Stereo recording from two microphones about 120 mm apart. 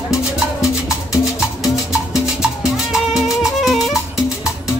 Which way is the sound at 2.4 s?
5° right (ahead or behind).